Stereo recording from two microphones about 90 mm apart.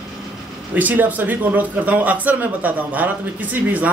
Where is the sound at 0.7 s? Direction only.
20° right (ahead or behind).